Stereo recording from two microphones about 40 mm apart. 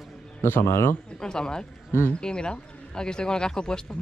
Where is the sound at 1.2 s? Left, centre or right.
Centre.